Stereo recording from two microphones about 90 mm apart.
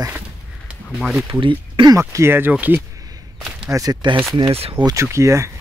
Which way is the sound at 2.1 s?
25° right (ahead or behind).